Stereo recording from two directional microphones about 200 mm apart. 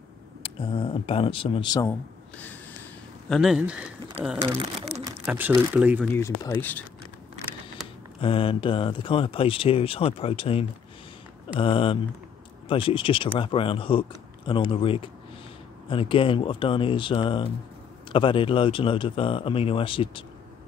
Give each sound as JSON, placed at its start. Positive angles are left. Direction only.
{"t": 0.4, "sound": "speech", "side_deg": 25}
{"t": 1.9, "sound": "speech", "side_deg": 10}
{"t": 4.4, "sound": "speech", "side_deg": -30}
{"t": 5.2, "sound": "speech", "side_deg": -5}
{"t": 6.1, "sound": "speech", "side_deg": 15}
{"t": 8.2, "sound": "speech", "side_deg": 25}